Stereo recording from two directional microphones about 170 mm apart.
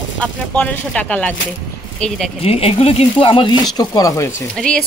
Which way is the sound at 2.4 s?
35° left (ahead or behind).